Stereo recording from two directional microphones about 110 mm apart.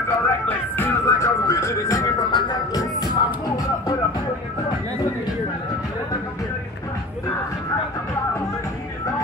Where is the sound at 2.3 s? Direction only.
35° left (ahead or behind).